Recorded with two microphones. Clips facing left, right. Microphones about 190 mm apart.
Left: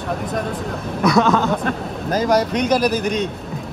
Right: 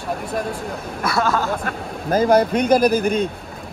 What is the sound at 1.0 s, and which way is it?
Speech, 5° right (ahead or behind).